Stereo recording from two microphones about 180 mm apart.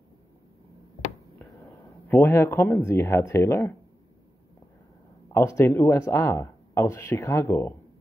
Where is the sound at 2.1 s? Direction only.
15° left (ahead or behind).